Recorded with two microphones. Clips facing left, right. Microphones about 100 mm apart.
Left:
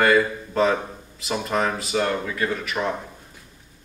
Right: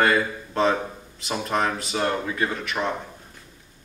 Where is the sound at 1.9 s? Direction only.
30° right (ahead or behind).